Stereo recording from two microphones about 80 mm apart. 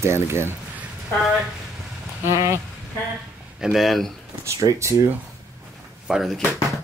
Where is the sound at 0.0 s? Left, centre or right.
Right.